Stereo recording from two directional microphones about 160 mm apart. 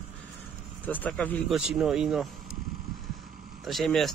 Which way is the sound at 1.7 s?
5° right (ahead or behind).